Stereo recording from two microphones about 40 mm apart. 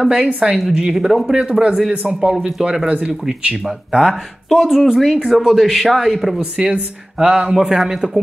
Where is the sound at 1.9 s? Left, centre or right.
Right.